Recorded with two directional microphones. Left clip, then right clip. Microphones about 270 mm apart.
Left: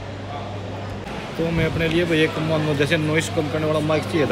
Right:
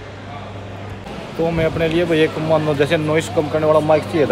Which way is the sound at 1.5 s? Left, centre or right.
Centre.